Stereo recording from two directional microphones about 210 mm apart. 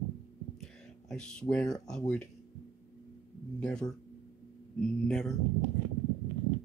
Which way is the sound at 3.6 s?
5° left (ahead or behind).